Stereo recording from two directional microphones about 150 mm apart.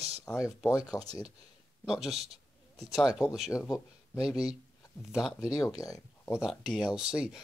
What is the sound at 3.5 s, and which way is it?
Speech, 20° left (ahead or behind).